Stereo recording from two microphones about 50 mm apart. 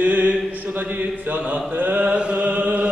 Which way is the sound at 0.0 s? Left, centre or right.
Right.